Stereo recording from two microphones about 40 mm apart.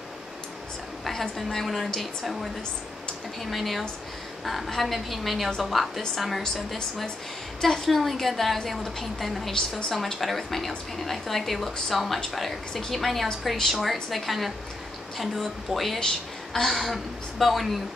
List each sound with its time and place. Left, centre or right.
1.0 s a woman's voice: centre
7.6 s a woman's voice: centre
16.0 s a woman's voice: centre